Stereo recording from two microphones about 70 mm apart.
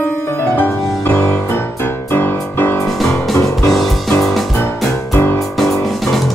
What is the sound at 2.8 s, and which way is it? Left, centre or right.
Music, centre.